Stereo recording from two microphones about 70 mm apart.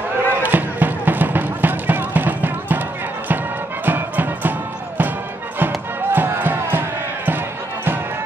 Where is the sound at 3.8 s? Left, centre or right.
Right.